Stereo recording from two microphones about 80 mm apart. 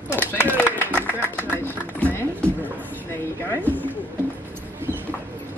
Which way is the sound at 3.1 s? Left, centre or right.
Left.